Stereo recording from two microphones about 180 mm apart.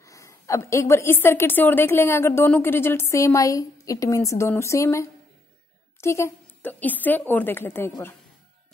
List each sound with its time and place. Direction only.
0.0 s a woman's voice: 15° left (ahead or behind)